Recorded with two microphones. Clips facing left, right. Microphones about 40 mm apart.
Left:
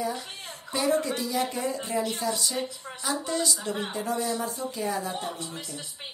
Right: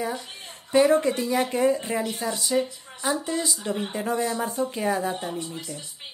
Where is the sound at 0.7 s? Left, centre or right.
Right.